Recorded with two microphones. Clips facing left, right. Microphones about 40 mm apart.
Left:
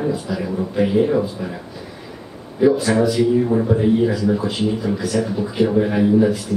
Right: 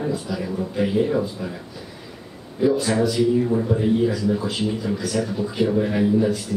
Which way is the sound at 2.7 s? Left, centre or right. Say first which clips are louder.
Left 3 dB; centre.